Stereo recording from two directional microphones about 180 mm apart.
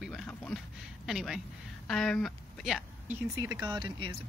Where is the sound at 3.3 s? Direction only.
20° right (ahead or behind).